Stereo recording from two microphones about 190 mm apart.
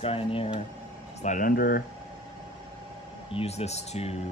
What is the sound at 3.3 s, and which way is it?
Speech, 30° left (ahead or behind).